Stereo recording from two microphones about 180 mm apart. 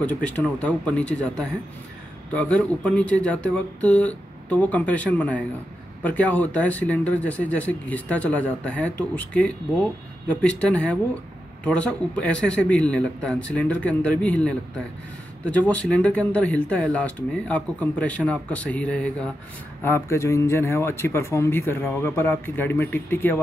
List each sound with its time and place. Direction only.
0.0 s speech: 5° left (ahead or behind)